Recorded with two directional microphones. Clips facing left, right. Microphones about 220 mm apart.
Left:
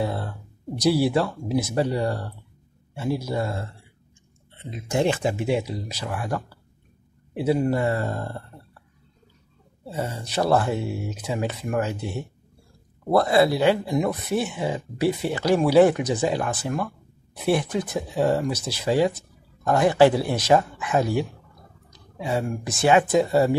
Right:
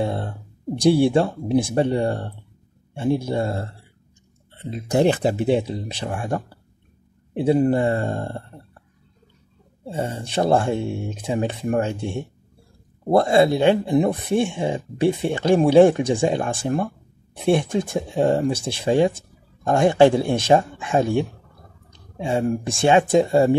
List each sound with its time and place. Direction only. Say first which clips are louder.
0.0 s speech: right 3 dB; 25° right (ahead or behind)
9.8 s speech: right 3 dB; 30° right (ahead or behind)